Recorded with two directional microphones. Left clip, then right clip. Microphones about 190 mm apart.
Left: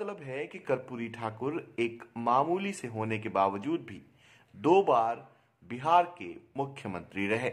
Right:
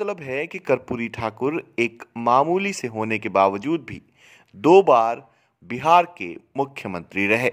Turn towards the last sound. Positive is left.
turn(degrees=-45)  # may be behind; listen again after turning